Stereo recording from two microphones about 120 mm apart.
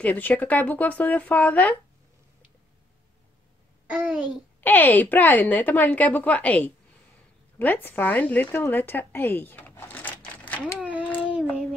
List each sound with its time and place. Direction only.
0.0 s a woman's voice: 15° left (ahead or behind)
3.9 s a child's voice: 10° right (ahead or behind)
4.6 s a woman's voice: 15° left (ahead or behind)
10.8 s a sound: 15° right (ahead or behind)